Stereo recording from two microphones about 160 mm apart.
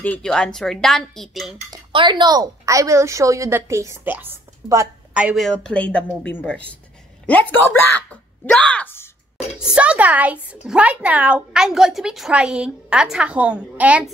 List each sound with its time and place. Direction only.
0.0 s speech: 5° left (ahead or behind)
1.7 s a woman's voice: 30° right (ahead or behind)
5.1 s speech: 5° right (ahead or behind)
8.1 s a sound: 5° left (ahead or behind)
9.6 s speech: 5° right (ahead or behind)